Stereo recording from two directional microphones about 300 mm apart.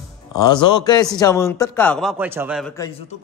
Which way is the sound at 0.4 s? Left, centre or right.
Centre.